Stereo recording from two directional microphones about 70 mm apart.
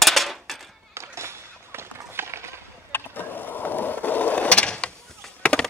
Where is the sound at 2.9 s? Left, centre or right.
Left.